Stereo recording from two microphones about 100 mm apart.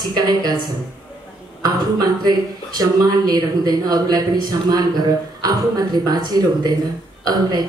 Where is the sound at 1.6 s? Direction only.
45° right (ahead or behind).